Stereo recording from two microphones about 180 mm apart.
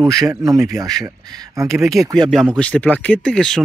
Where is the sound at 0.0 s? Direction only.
20° right (ahead or behind).